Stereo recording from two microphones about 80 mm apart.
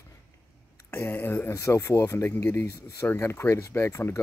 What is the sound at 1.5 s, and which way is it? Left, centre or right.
Speech, left.